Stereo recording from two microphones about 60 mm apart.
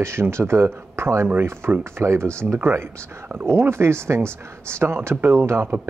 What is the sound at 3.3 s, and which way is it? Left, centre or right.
Speech, right.